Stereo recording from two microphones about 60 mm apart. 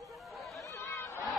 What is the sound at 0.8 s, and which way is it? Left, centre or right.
Chatter, left.